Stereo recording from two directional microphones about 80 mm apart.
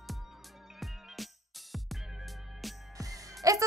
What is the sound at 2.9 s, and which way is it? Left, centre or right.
Music, right.